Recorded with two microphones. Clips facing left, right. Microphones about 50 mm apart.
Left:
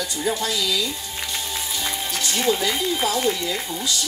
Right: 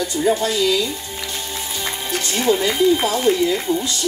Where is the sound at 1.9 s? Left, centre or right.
Right.